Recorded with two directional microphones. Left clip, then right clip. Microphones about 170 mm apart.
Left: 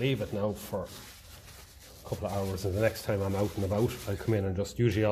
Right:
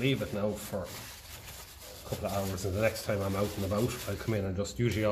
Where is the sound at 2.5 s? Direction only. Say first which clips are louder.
Left 3 dB; 55° left (ahead or behind).